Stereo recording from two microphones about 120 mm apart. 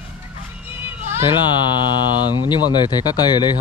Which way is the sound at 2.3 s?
40° left (ahead or behind).